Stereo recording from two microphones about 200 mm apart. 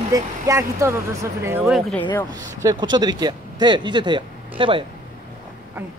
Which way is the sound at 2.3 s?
20° right (ahead or behind).